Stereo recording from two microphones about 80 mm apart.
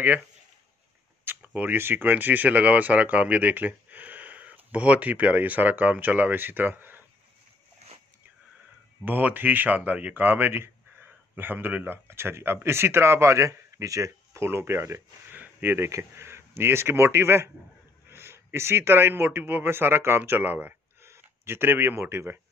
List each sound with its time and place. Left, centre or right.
1.2 s speech: right
9.0 s speech: right